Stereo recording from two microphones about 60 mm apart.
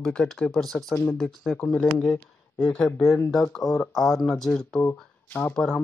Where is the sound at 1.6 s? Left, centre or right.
Centre.